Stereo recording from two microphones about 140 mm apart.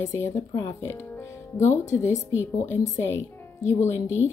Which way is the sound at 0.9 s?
15° left (ahead or behind).